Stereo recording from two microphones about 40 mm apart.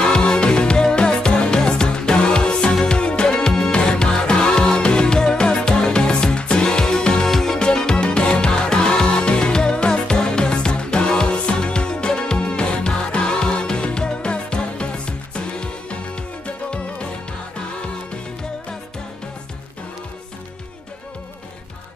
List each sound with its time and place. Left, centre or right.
0.0 s music: left